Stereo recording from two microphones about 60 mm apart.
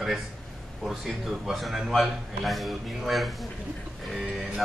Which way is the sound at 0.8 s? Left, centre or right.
Centre.